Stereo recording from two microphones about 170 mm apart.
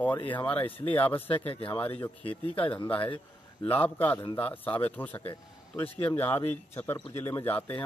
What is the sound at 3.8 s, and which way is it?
Speech, 10° left (ahead or behind).